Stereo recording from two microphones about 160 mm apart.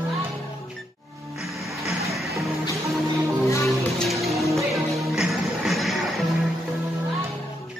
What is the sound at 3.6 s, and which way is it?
Music, centre (ahead or behind).